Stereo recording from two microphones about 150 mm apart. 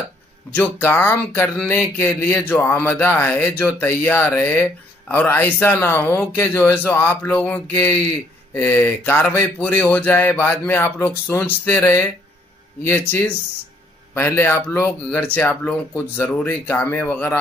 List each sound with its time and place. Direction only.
0.6 s speech: 15° left (ahead or behind)
14.1 s speech: 15° left (ahead or behind)